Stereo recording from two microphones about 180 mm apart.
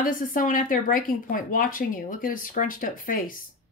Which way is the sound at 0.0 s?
50° left (ahead or behind).